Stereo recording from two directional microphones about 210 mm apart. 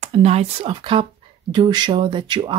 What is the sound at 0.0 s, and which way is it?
Speech, 30° right (ahead or behind).